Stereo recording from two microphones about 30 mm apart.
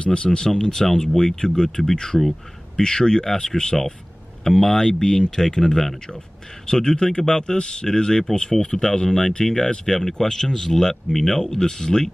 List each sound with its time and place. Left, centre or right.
0.0 s speech: left
0.6 s speech: left
2.1 s speech: centre
2.8 s speech: left